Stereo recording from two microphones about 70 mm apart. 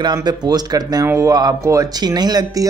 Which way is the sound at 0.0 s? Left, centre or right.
Right.